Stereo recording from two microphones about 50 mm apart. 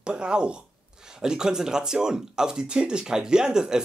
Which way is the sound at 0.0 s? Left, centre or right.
Centre.